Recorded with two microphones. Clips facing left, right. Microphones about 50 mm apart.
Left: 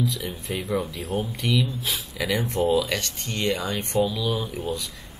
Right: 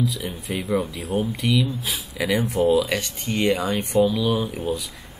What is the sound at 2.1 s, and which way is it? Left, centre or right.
Speech, centre.